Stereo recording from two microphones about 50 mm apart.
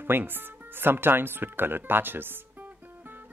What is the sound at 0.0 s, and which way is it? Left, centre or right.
Speech, right.